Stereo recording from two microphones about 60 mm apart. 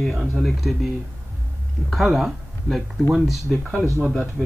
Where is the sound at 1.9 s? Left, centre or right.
Centre.